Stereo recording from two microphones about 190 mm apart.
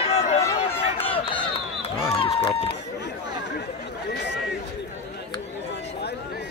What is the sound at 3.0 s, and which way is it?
Chatter, 65° left (ahead or behind).